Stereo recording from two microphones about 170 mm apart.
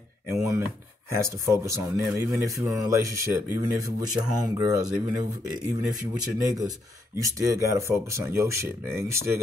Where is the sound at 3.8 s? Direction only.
25° right (ahead or behind).